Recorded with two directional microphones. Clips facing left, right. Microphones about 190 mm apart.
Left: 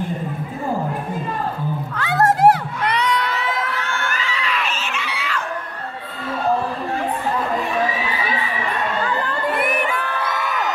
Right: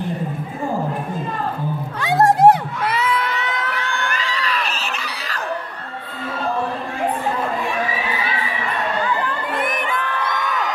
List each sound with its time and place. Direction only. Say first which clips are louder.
2.0 s music: right 2 dB; 15° right (ahead or behind)
2.8 s crowd: even; 5° right (ahead or behind)
4.1 s a sound: right 1 dB; 35° right (ahead or behind)
9.6 s crowd: left 2 dB; 10° left (ahead or behind)